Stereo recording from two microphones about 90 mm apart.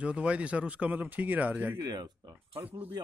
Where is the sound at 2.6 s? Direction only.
20° right (ahead or behind).